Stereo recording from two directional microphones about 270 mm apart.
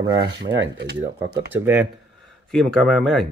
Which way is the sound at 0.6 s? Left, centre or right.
Right.